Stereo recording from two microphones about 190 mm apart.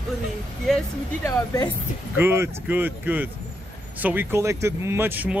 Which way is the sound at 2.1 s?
15° right (ahead or behind).